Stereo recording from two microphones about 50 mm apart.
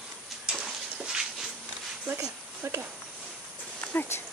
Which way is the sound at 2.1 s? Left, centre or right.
Right.